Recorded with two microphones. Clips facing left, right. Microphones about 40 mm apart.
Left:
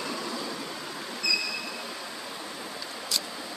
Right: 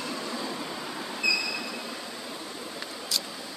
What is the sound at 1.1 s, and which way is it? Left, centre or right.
Train, right.